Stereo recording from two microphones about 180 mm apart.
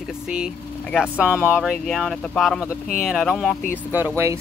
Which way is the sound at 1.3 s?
5° left (ahead or behind).